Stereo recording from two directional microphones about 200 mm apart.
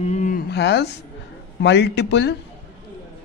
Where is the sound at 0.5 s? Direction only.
60° left (ahead or behind).